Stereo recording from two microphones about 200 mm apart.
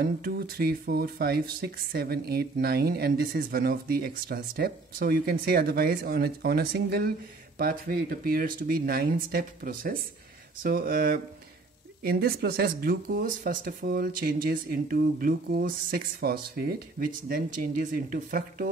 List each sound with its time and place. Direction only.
0.0 s speech: 50° right (ahead or behind)